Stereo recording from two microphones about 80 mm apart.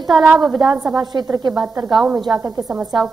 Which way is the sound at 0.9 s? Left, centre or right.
Right.